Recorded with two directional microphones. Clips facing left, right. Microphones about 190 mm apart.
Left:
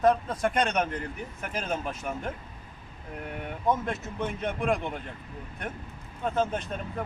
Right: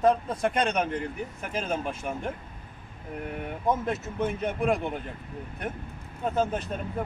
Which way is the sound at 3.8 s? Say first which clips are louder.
Right 3 dB; 5° right (ahead or behind).